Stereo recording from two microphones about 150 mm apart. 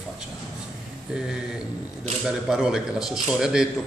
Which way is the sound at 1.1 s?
5° right (ahead or behind).